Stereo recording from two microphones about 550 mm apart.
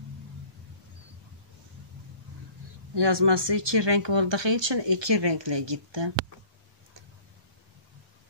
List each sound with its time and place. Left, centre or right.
2.9 s speech: right